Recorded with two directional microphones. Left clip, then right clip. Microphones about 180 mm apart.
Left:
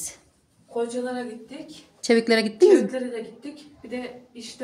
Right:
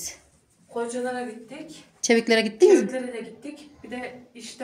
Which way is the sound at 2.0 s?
5° left (ahead or behind).